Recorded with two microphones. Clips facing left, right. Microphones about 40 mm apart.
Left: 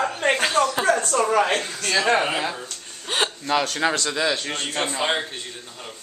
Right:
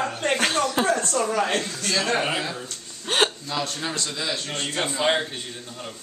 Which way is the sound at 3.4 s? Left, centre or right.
Left.